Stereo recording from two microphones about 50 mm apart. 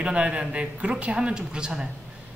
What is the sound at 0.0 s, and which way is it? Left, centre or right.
Speech, right.